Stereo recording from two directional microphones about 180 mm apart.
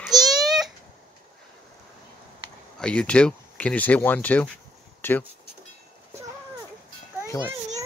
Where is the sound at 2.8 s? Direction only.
5° left (ahead or behind).